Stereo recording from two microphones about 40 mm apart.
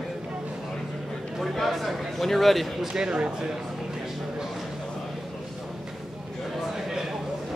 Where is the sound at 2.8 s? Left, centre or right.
Centre.